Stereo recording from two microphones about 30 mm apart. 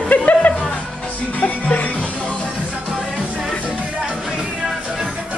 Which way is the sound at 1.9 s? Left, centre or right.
Left.